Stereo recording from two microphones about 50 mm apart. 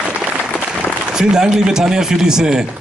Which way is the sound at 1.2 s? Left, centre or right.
Centre.